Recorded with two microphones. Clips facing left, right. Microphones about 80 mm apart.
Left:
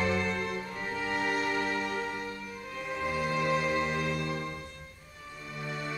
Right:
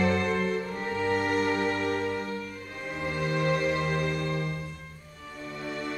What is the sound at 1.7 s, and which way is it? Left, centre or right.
Music, right.